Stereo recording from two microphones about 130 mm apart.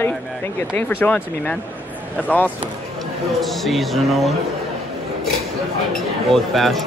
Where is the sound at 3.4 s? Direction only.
Centre (ahead or behind).